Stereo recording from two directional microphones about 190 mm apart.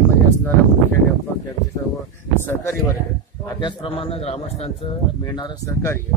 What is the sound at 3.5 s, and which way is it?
A man's voice, 25° left (ahead or behind).